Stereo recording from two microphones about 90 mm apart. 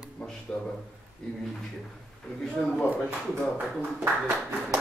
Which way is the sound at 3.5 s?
25° right (ahead or behind).